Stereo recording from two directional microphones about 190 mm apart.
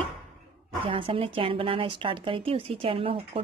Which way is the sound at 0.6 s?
25° right (ahead or behind).